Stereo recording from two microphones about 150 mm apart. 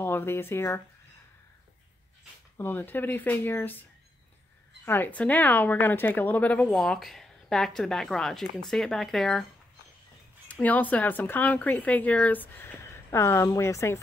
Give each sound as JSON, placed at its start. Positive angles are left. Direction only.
{"t": 0.0, "sound": "a woman's voice", "side_deg": 15}
{"t": 2.5, "sound": "a woman's voice", "side_deg": 15}
{"t": 4.8, "sound": "a woman's voice", "side_deg": 15}
{"t": 10.5, "sound": "a woman's voice", "side_deg": 10}